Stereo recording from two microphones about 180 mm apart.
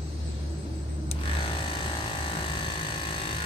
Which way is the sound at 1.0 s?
30° left (ahead or behind).